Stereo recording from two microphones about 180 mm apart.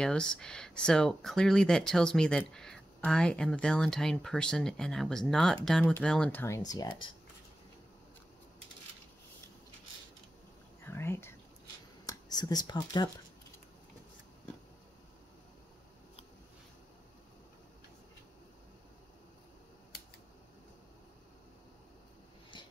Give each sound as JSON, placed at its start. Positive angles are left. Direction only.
{"t": 0.0, "sound": "speech", "side_deg": 5}
{"t": 10.9, "sound": "speech", "side_deg": 15}